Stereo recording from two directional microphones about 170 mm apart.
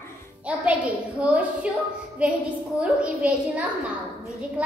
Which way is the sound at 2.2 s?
5° right (ahead or behind).